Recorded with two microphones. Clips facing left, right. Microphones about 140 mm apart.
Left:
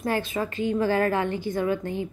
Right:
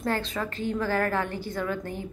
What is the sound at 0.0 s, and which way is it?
A woman's voice, 15° left (ahead or behind).